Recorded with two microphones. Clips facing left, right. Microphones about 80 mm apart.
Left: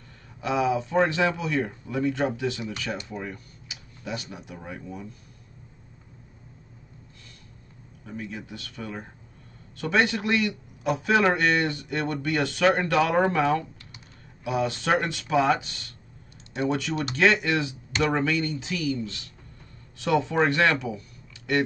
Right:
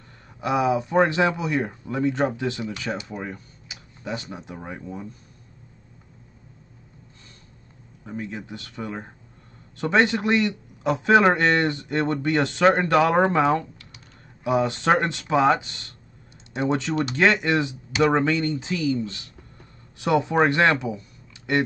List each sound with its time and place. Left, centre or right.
0.4 s a man's voice: centre
8.0 s a man's voice: right